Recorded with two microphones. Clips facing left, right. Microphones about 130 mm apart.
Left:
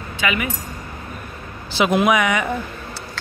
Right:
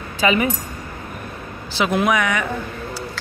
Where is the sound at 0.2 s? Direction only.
30° right (ahead or behind).